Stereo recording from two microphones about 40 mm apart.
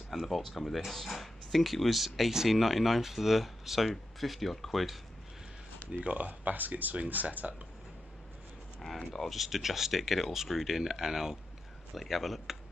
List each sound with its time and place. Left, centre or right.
0.3 s speech: centre
5.9 s speech: right
9.1 s speech: centre
11.9 s speech: centre